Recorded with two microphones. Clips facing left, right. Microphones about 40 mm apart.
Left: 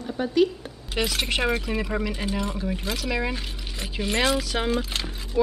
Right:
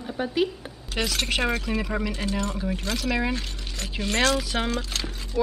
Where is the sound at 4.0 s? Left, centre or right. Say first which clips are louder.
Even; centre.